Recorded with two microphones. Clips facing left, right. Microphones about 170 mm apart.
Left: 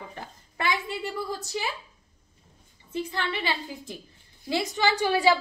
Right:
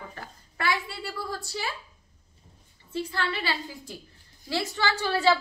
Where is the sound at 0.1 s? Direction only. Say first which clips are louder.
Left 2 dB; 20° left (ahead or behind).